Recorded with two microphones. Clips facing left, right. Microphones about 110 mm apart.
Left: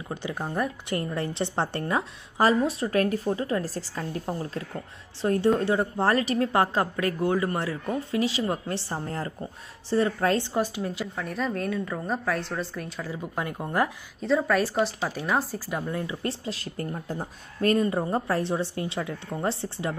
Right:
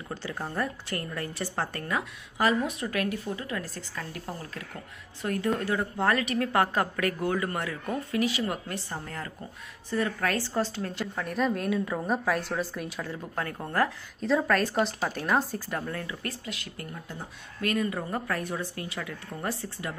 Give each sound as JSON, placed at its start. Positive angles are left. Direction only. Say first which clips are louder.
{"t": 0.1, "sound": "a woman's voice", "louder": "left 3 dB", "side_deg": 15}
{"t": 13.1, "sound": "speech", "louder": "left 2 dB", "side_deg": 10}
{"t": 14.2, "sound": "a woman's voice", "louder": "left 2 dB", "side_deg": 0}
{"t": 15.9, "sound": "a woman's voice", "louder": "left 5 dB", "side_deg": 20}